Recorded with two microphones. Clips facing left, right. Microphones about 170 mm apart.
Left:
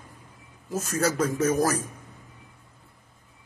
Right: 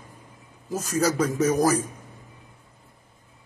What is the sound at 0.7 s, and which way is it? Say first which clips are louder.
A man's voice: right 2 dB; centre (ahead or behind).